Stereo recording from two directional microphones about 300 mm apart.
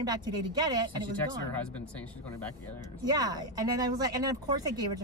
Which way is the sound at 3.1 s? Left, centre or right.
Centre.